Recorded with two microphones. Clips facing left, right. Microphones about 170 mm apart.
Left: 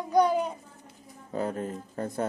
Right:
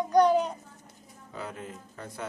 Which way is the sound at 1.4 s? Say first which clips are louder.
Left 8 dB; 40° left (ahead or behind).